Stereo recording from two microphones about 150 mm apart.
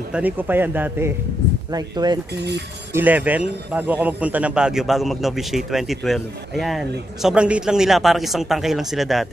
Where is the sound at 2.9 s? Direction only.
10° right (ahead or behind).